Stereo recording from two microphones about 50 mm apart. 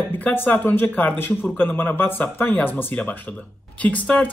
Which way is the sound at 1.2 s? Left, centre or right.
Left.